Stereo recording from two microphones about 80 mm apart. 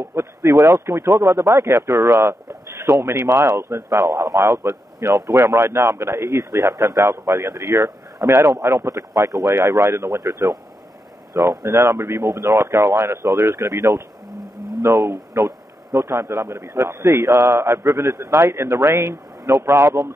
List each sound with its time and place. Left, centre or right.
0.1 s speech: right
11.6 s speech: right